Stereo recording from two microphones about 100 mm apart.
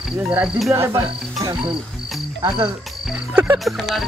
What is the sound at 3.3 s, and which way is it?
Speech, 25° right (ahead or behind).